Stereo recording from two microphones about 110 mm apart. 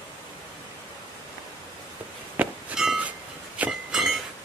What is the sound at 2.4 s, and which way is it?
Clang, 15° right (ahead or behind).